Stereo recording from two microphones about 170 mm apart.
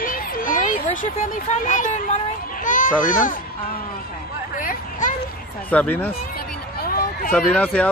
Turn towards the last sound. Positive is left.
turn(degrees=10)  # may be behind; listen again after turning